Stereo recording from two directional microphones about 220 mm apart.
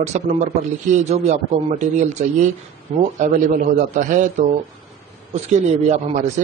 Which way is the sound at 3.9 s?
35° right (ahead or behind).